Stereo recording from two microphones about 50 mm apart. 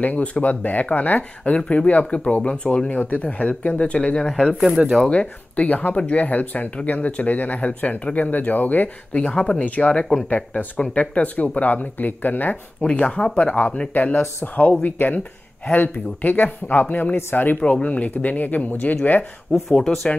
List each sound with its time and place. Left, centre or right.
0.0 s speech: left
4.2 s speech: centre
5.1 s speech: left
12.8 s speech: left
17.6 s speech: left
19.5 s speech: centre